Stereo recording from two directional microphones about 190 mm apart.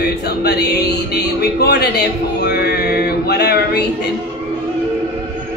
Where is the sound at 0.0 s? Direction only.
60° left (ahead or behind).